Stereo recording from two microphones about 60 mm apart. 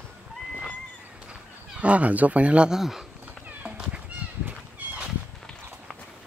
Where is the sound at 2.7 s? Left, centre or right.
Centre.